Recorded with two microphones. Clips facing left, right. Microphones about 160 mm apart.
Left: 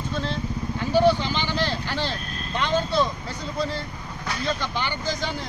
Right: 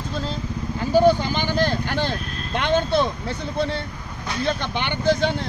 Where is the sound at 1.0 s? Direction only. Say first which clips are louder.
Right 3 dB; 45° right (ahead or behind); by 3.8 s 65° right (ahead or behind).